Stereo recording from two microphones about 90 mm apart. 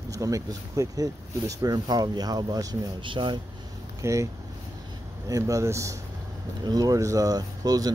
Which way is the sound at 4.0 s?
35° right (ahead or behind).